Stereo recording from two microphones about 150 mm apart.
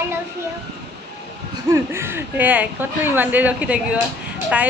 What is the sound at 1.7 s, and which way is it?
Speech, 15° right (ahead or behind).